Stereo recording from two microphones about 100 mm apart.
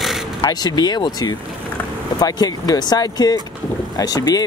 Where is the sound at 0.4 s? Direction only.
45° left (ahead or behind).